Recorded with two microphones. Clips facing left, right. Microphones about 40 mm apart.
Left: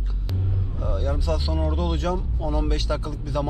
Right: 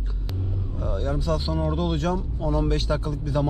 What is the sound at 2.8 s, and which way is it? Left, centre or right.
Speech, left.